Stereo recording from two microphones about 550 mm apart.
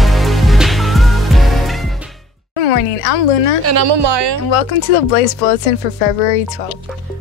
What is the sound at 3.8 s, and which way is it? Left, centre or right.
Speech, right.